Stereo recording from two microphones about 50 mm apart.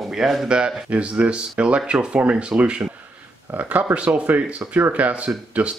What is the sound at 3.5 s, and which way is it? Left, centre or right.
Speech, right.